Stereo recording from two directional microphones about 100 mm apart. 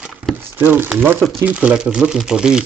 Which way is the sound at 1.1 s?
Centre (ahead or behind).